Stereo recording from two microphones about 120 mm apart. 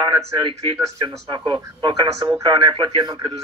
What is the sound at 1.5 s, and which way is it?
Speech, 45° right (ahead or behind).